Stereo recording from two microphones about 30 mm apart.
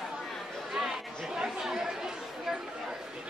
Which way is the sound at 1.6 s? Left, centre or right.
Centre.